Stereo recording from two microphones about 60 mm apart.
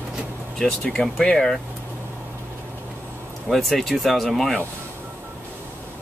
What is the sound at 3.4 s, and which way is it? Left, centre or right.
Speech, centre.